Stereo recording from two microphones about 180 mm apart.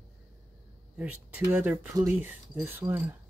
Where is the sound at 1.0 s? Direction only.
10° right (ahead or behind).